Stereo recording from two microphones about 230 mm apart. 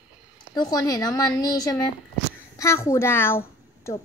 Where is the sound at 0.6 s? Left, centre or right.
Centre.